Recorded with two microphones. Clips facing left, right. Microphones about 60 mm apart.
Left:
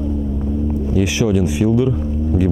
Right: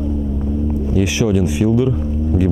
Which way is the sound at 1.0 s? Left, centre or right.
Centre.